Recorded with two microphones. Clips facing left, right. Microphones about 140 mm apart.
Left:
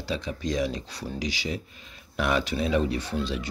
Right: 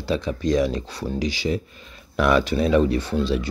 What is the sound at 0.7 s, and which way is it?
Speech, 55° right (ahead or behind).